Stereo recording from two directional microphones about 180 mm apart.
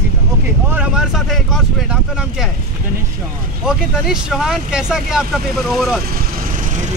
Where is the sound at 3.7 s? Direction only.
Centre (ahead or behind).